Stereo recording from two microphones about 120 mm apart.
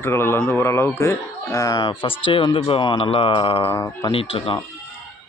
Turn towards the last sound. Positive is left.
turn(degrees=50)  # may be behind; listen again after turning